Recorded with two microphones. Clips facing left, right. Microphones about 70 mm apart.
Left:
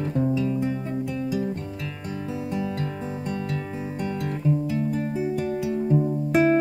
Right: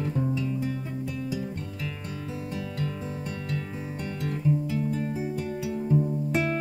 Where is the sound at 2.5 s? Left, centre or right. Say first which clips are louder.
Left 4 dB; centre.